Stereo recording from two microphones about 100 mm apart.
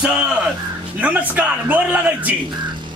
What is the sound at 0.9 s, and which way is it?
A man's voice, 15° right (ahead or behind).